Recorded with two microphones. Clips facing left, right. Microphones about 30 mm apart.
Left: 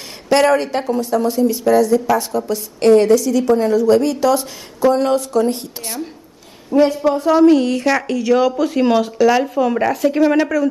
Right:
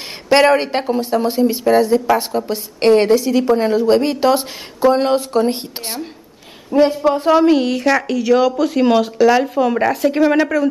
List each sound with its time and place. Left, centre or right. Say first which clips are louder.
0.3 s a woman's voice: right 1 dB; right
6.7 s a woman's voice: even; right
7.4 s speech: left 1 dB; centre